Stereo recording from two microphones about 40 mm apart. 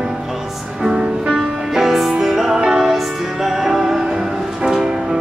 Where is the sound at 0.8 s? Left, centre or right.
Centre.